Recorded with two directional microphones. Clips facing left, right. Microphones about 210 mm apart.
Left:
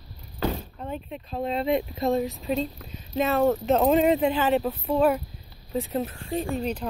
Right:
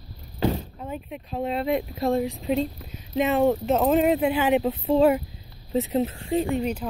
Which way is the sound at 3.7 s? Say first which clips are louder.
Left 2 dB; 5° right (ahead or behind).